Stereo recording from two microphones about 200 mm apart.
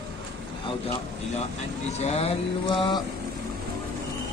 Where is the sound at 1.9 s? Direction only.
35° left (ahead or behind).